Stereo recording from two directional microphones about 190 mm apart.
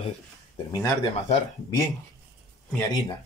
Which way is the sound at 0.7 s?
15° left (ahead or behind).